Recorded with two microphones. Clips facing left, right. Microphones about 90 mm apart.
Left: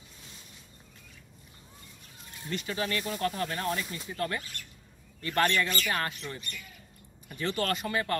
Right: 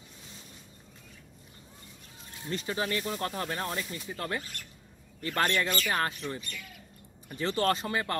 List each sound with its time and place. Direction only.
2.5 s speech: 30° right (ahead or behind)